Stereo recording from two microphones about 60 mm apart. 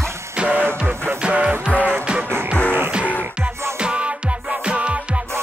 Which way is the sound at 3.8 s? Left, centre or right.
Centre.